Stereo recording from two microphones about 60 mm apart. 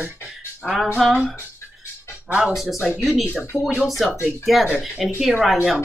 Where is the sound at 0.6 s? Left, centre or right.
Centre.